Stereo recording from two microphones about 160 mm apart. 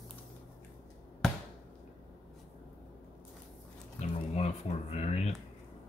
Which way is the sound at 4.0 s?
45° left (ahead or behind).